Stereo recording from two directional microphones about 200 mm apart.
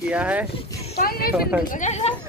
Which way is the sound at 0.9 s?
50° left (ahead or behind).